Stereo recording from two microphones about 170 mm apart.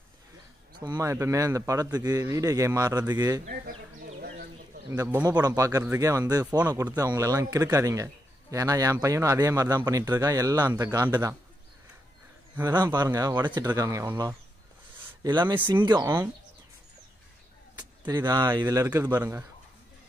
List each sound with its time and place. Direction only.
0.7 s a man's voice: 25° right (ahead or behind)
3.4 s a sound: 60° right (ahead or behind)
4.8 s a man's voice: 20° right (ahead or behind)
12.5 s a man's voice: 20° right (ahead or behind)
18.0 s a man's voice: 20° right (ahead or behind)